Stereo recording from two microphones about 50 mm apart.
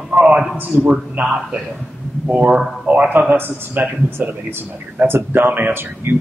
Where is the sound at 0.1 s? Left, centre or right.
Right.